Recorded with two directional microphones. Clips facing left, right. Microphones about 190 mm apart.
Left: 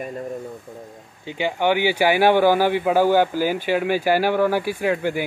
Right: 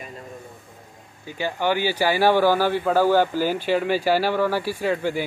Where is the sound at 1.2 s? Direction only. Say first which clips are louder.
Left 3 dB; 20° left (ahead or behind).